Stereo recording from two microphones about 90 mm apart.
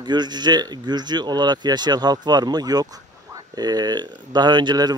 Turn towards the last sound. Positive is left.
turn(degrees=-50)  # may be behind; listen again after turning